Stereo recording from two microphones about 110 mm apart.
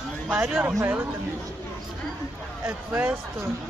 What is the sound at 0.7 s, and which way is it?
Speech, 20° right (ahead or behind).